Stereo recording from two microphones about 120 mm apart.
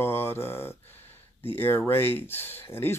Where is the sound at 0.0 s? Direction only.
20° left (ahead or behind).